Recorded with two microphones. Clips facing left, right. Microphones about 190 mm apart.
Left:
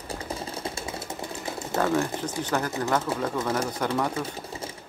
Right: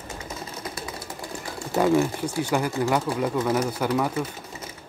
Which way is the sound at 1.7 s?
15° right (ahead or behind).